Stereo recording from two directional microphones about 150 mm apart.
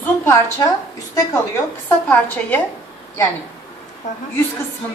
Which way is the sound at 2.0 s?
10° left (ahead or behind).